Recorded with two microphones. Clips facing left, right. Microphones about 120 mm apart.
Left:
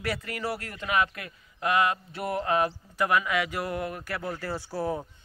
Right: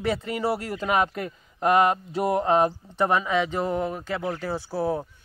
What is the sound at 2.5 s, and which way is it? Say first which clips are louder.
Speech: right 5 dB; 35° right (ahead or behind).